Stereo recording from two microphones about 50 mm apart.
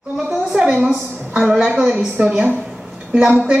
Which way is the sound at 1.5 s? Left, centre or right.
Centre.